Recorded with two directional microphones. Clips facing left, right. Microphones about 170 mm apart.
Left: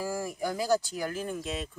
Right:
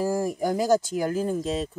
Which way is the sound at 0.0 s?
40° right (ahead or behind).